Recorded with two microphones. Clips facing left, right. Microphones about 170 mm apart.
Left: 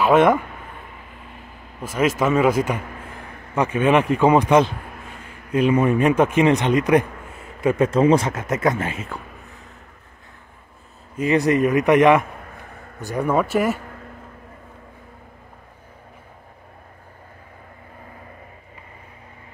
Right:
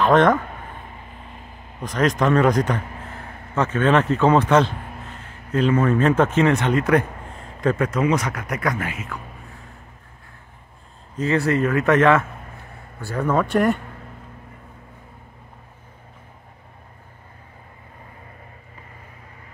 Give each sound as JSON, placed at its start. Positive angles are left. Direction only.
{"t": 0.0, "sound": "speech", "side_deg": 10}
{"t": 1.8, "sound": "a man's voice", "side_deg": 5}
{"t": 7.8, "sound": "speech", "side_deg": 30}
{"t": 11.1, "sound": "a man's voice", "side_deg": 15}